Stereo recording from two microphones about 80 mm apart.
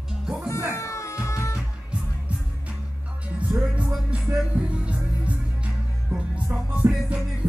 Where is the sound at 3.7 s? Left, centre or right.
Centre.